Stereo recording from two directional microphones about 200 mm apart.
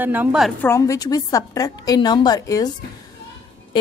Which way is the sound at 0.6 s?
15° left (ahead or behind).